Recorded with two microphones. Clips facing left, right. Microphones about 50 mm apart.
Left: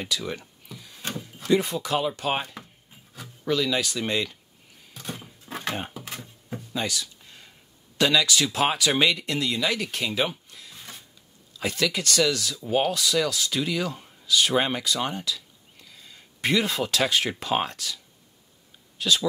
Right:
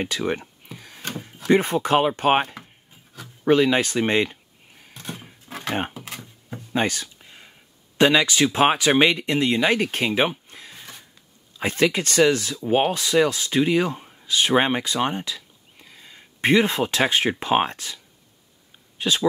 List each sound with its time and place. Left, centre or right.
0.0 s a sound: right
1.0 s drawer open or close: right
1.5 s speech: right
3.4 s speech: right
5.5 s a sound: centre
6.7 s speech: right
7.2 s whispering: right
8.0 s speech: right